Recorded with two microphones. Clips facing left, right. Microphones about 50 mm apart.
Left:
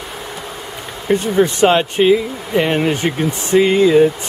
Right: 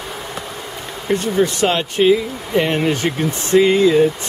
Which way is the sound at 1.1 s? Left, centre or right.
Centre.